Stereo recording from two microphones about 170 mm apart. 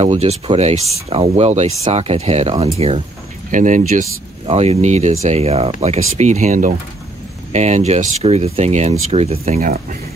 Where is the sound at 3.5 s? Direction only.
50° right (ahead or behind).